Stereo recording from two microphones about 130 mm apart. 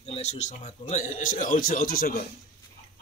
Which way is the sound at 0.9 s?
80° left.